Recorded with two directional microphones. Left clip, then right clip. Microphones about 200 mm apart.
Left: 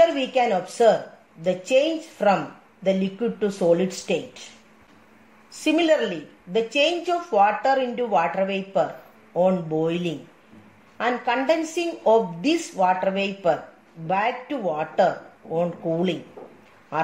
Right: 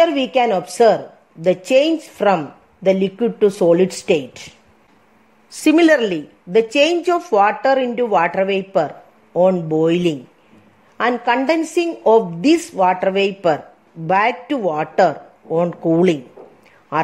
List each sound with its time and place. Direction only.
0.0 s a woman's voice: 45° right (ahead or behind)
5.6 s a woman's voice: 50° right (ahead or behind)